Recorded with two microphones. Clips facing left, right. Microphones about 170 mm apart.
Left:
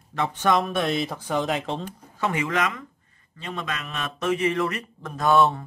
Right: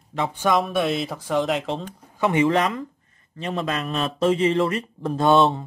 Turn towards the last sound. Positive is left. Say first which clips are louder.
# right 2 dB
turn(degrees=-20)  # may be behind; listen again after turning